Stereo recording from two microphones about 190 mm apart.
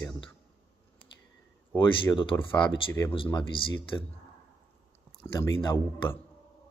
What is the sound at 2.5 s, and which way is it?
Speech, 25° left (ahead or behind).